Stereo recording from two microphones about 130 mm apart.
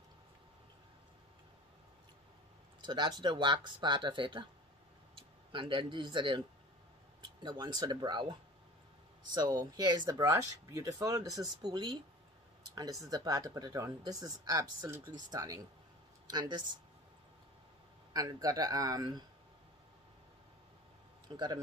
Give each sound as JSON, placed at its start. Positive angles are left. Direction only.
{"t": 2.8, "sound": "speech", "side_deg": -35}
{"t": 5.5, "sound": "speech", "side_deg": -40}
{"t": 7.4, "sound": "speech", "side_deg": -35}
{"t": 18.1, "sound": "speech", "side_deg": -30}
{"t": 21.3, "sound": "speech", "side_deg": -35}